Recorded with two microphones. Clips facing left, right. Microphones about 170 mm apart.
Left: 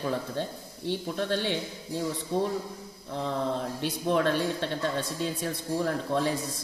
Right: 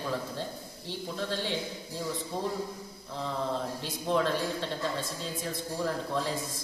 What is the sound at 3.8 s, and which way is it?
A man's voice, 65° left (ahead or behind).